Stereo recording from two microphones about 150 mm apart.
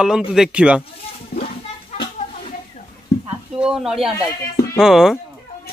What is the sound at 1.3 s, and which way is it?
Speech, 40° left (ahead or behind).